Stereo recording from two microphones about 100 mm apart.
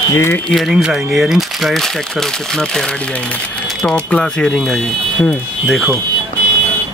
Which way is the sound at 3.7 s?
Centre (ahead or behind).